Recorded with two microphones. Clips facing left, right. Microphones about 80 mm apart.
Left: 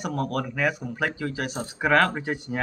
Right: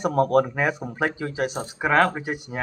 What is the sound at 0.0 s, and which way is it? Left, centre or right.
Speech, right.